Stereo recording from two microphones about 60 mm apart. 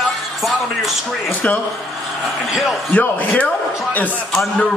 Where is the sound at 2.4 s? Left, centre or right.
Centre.